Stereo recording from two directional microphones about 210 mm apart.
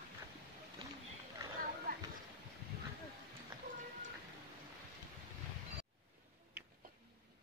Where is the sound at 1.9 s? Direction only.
45° right (ahead or behind).